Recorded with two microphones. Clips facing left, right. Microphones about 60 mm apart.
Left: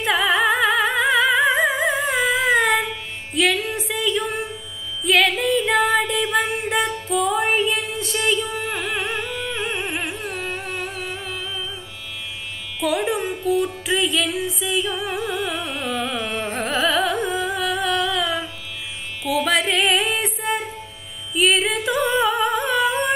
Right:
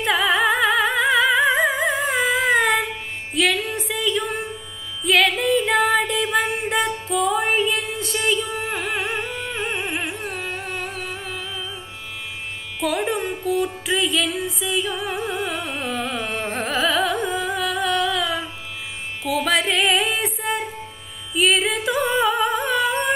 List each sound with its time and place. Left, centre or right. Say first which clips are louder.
0.0 s music: even; centre
12.8 s music: left 1 dB; centre